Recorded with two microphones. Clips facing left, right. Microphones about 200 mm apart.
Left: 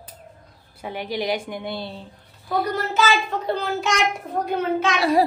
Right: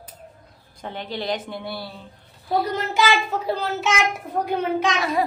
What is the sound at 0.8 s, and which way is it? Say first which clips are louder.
Speech: left 2 dB; 10° left (ahead or behind).